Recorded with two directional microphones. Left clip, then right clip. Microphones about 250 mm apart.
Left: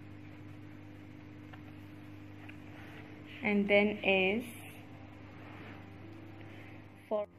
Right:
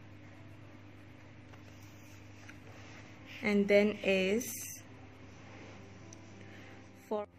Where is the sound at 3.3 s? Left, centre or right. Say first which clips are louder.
Right 1 dB; right.